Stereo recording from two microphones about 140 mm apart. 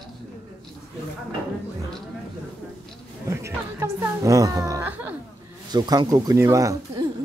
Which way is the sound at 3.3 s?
20° right (ahead or behind).